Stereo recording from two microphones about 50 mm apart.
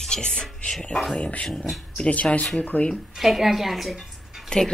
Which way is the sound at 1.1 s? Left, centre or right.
Left.